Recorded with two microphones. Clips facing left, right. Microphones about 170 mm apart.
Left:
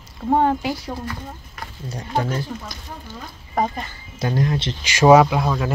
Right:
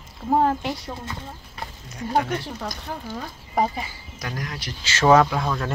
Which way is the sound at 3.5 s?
10° right (ahead or behind).